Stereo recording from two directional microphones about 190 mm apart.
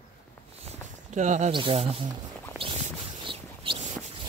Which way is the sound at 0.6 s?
40° right (ahead or behind).